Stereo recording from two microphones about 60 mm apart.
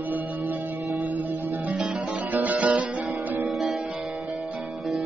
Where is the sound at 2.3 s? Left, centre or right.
Right.